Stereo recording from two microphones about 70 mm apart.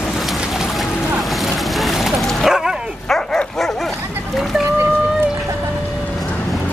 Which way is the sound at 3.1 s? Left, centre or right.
Centre.